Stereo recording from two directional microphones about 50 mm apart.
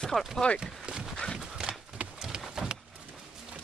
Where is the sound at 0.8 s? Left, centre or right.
Centre.